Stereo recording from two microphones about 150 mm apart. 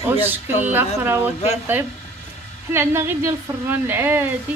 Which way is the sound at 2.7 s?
15° right (ahead or behind).